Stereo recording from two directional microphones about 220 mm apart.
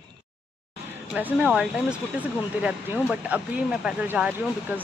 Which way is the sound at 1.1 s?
5° right (ahead or behind).